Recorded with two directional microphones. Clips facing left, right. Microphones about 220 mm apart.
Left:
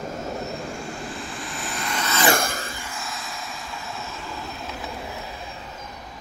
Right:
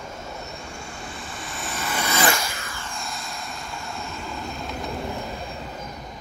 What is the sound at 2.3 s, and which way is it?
Vehicle, 50° left (ahead or behind).